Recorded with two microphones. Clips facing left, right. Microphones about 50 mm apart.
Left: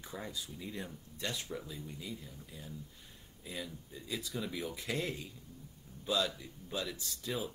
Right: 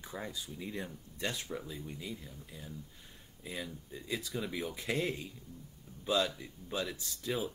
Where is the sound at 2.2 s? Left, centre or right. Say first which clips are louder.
Right 1 dB; centre.